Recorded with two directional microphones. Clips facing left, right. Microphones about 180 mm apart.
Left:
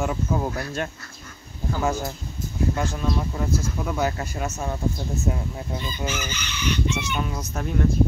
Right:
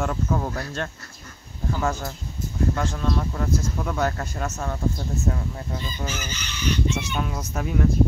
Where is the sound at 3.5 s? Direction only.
5° left (ahead or behind).